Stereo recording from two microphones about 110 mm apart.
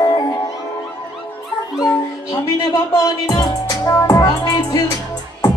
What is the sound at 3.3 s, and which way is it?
Music, 35° left (ahead or behind).